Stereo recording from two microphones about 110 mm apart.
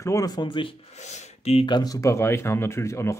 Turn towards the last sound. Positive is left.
turn(degrees=25)  # may be behind; listen again after turning